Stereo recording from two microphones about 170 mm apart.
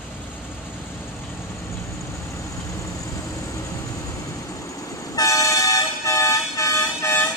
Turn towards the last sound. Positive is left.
turn(degrees=15)  # may be behind; listen again after turning